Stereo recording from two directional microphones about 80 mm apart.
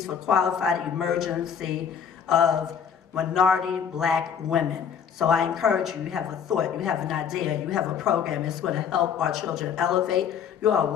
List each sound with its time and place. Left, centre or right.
0.0 s a woman's voice: centre